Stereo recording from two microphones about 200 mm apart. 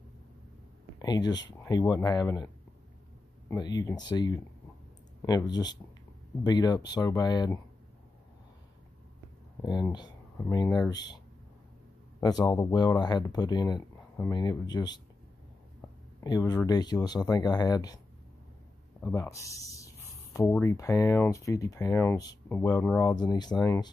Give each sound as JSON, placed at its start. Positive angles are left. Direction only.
{"t": 0.9, "sound": "speech", "side_deg": 20}
{"t": 9.6, "sound": "speech", "side_deg": 20}
{"t": 12.2, "sound": "speech", "side_deg": 20}
{"t": 16.2, "sound": "speech", "side_deg": 20}